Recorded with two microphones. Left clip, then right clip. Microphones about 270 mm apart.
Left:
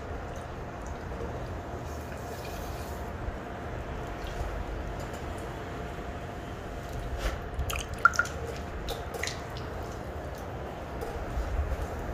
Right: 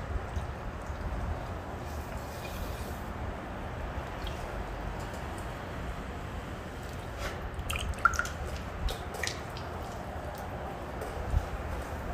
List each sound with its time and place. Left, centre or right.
8.0 s drip: centre